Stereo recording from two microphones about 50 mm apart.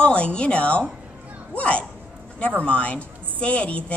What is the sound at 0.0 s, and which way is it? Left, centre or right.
A woman's voice, left.